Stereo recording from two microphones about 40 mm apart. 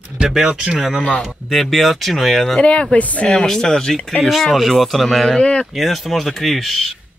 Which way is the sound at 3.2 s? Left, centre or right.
Left.